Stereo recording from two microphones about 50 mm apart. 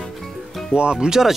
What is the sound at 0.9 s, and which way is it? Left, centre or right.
Speech, centre.